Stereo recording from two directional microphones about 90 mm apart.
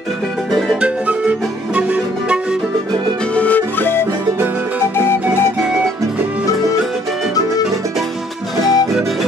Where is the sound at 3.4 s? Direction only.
20° left (ahead or behind).